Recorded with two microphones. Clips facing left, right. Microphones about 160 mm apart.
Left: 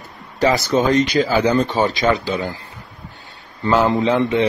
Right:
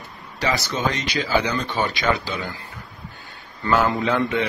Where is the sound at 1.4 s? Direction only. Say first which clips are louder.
Left 8 dB; 30° left (ahead or behind).